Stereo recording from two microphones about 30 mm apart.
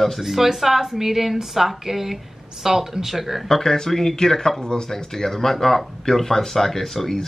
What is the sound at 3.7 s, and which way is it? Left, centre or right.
Speech, centre.